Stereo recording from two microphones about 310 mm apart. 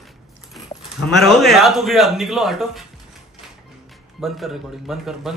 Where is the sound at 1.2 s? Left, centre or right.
Centre.